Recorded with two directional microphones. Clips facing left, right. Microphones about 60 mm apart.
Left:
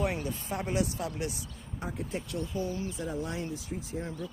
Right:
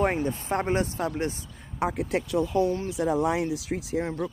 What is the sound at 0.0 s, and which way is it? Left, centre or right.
Speech, right.